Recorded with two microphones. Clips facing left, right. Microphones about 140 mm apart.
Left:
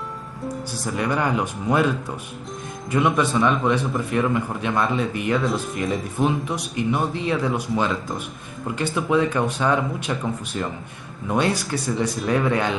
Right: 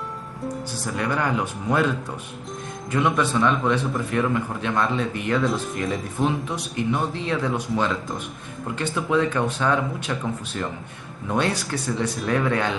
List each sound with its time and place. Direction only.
0.9 s speech: 15° left (ahead or behind)
2.9 s speech: 15° left (ahead or behind)